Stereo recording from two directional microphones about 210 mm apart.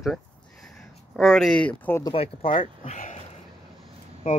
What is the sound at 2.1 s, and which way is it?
Speech, 25° left (ahead or behind).